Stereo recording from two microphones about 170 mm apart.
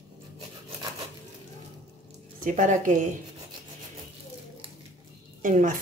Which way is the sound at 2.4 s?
50° right (ahead or behind).